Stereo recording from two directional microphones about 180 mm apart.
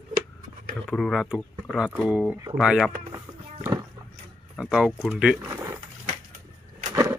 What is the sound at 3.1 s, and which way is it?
Music, 15° right (ahead or behind).